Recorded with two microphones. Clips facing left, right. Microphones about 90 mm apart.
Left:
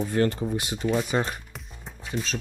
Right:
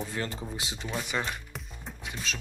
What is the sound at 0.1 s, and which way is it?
Speech, 55° left (ahead or behind).